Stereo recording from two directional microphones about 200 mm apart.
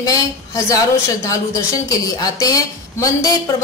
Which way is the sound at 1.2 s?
15° left (ahead or behind).